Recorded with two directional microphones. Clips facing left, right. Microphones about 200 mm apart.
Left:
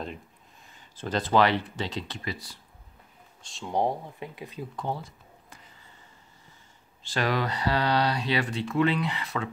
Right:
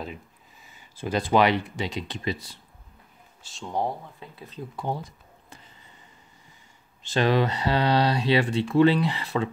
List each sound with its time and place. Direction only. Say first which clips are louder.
0.0 s speech: even; 5° right (ahead or behind); by 2.6 s 25° right (ahead or behind)
3.4 s speech: even; centre (ahead or behind)
3.7 s speech: left 2 dB; 15° left (ahead or behind)
4.7 s speech: right 3 dB; 15° right (ahead or behind)
7.0 s speech: right 5 dB; 25° right (ahead or behind)